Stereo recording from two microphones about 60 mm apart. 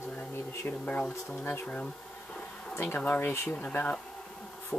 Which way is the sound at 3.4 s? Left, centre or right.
Left.